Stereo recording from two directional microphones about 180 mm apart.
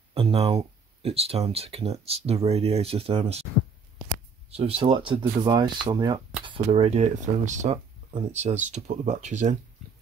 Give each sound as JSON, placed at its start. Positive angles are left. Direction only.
{"t": 0.1, "sound": "speech", "side_deg": -35}
{"t": 4.5, "sound": "speech", "side_deg": -35}
{"t": 9.8, "sound": "a sound", "side_deg": 0}